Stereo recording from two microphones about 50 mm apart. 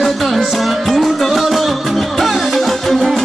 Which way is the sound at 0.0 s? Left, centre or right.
Centre.